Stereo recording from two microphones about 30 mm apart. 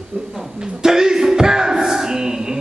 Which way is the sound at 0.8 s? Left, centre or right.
Centre.